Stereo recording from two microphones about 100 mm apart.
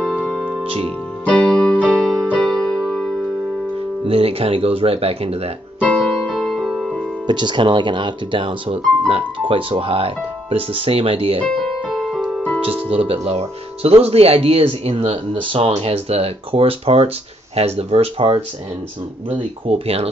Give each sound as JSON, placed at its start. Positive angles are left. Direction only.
{"t": 0.7, "sound": "music", "side_deg": -65}
{"t": 1.2, "sound": "keyboard", "side_deg": 10}
{"t": 2.3, "sound": "music", "side_deg": 5}
{"t": 4.0, "sound": "speech", "side_deg": -75}
{"t": 5.8, "sound": "music", "side_deg": 10}
{"t": 7.2, "sound": "speech", "side_deg": -50}
{"t": 11.6, "sound": "music", "side_deg": 0}
{"t": 12.6, "sound": "speech", "side_deg": -70}
{"t": 19.2, "sound": "speech", "side_deg": -65}